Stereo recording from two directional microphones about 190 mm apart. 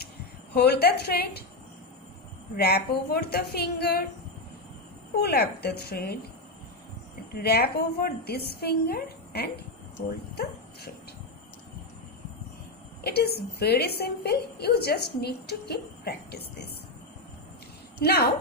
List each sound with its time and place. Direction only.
0.0 s speech: 60° left (ahead or behind)
2.5 s a woman's voice: 55° left (ahead or behind)
5.2 s a woman's voice: 55° left (ahead or behind)
7.3 s a woman's voice: 55° left (ahead or behind)
13.0 s a woman's voice: 55° left (ahead or behind)
18.0 s a woman's voice: 55° left (ahead or behind)